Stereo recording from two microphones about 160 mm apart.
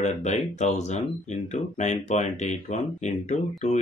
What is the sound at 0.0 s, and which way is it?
Speech, 45° left (ahead or behind).